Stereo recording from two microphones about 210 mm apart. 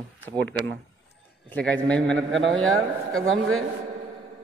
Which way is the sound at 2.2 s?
65° right (ahead or behind).